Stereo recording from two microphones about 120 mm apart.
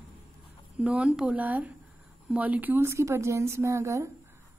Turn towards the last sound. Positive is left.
turn(degrees=-25)  # may be behind; listen again after turning